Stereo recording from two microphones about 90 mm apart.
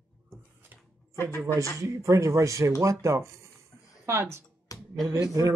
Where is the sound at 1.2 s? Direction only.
25° left (ahead or behind).